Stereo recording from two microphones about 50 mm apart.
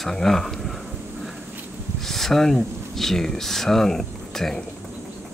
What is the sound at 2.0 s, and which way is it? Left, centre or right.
Speech, centre.